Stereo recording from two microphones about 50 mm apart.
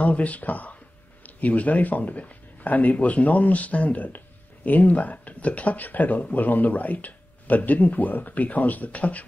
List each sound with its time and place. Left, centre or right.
0.0 s speech: left